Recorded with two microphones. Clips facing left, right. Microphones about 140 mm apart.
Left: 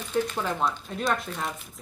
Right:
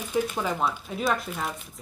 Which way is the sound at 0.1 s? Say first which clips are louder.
Even; 5° right (ahead or behind).